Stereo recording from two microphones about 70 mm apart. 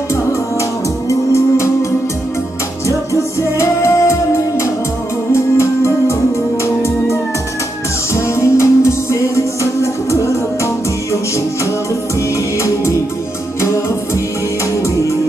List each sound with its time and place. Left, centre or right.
0.1 s music: left
3.1 s music: left
8.1 s music: left